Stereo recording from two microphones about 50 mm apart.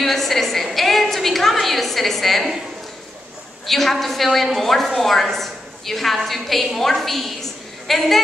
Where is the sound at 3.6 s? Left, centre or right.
Centre.